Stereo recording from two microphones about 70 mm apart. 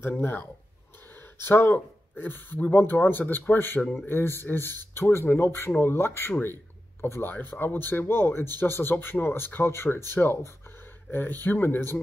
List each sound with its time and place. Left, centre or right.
0.0 s speech: left